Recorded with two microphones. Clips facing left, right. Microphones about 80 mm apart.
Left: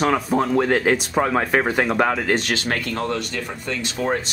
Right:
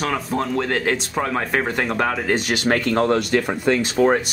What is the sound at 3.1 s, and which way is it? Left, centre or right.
Speech, right.